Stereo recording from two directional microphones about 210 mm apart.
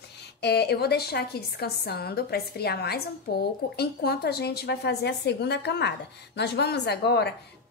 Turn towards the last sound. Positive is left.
turn(degrees=50)  # may be behind; listen again after turning